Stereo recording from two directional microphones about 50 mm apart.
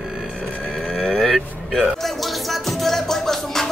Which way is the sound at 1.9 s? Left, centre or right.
Centre.